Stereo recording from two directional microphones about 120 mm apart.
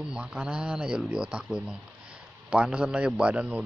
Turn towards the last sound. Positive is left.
turn(degrees=-10)  # may be behind; listen again after turning